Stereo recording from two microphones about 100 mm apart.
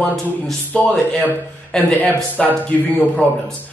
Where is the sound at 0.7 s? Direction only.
10° left (ahead or behind).